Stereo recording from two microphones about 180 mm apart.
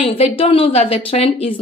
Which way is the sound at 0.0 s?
30° left (ahead or behind).